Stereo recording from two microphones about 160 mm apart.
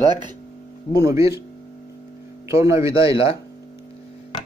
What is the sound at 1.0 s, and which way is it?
Speech, 20° right (ahead or behind).